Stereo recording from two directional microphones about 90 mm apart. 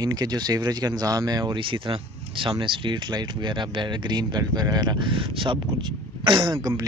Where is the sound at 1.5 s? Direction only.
70° right (ahead or behind); by 5.1 s 50° right (ahead or behind).